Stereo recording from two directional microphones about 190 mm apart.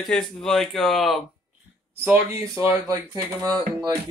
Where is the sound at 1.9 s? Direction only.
10° right (ahead or behind).